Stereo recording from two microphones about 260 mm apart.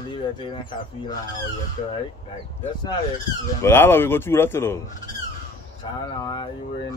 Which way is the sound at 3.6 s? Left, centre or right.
Centre.